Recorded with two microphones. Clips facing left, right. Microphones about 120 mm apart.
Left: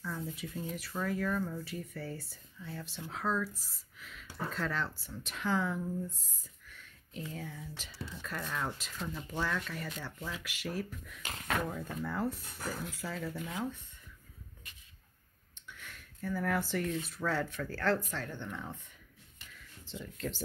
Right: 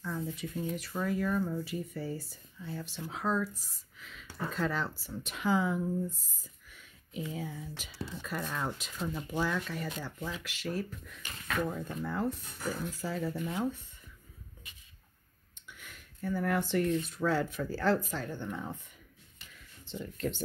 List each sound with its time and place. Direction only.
0.0 s a sound: centre (ahead or behind)
0.6 s speech: centre (ahead or behind)
15.7 s speech: 5° right (ahead or behind)
19.9 s speech: centre (ahead or behind)